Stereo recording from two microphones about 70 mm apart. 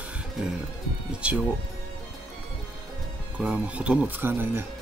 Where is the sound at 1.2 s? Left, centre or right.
Centre.